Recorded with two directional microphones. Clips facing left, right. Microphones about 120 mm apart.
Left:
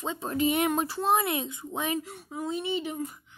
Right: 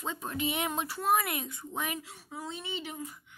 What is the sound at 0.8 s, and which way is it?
Speech, 25° left (ahead or behind).